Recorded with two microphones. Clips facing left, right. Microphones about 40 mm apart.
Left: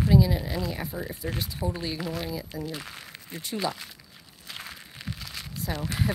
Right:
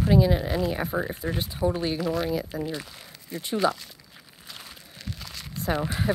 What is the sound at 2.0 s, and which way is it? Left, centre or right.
Speech, centre.